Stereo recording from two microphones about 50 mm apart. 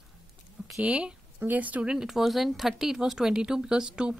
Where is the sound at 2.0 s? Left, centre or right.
Centre.